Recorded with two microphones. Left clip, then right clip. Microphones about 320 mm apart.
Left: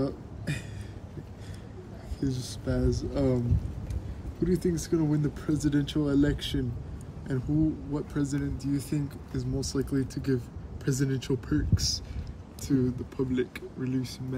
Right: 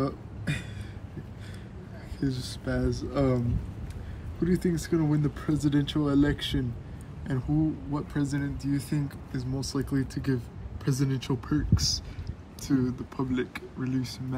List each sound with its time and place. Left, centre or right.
0.0 s a sound: right
2.1 s speech: right
4.5 s speech: right
7.9 s speech: right